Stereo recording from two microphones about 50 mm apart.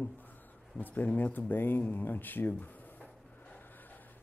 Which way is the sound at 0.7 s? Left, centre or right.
Left.